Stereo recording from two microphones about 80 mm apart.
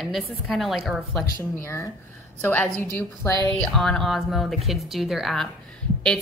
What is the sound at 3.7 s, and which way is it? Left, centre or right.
A woman's voice, centre.